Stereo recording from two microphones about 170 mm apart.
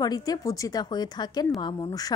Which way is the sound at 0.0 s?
20° left (ahead or behind).